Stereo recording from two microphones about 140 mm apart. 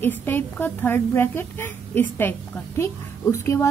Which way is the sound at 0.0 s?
15° left (ahead or behind).